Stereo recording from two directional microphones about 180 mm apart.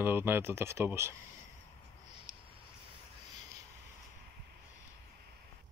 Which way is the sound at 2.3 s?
50° right (ahead or behind).